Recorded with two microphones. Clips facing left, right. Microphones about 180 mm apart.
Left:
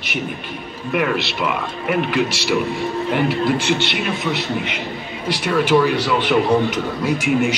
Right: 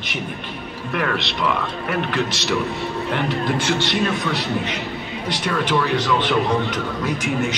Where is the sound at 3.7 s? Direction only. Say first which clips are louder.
Right 2 dB; 25° left (ahead or behind).